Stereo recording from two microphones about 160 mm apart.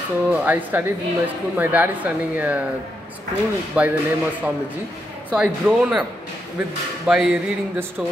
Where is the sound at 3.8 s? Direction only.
5° right (ahead or behind).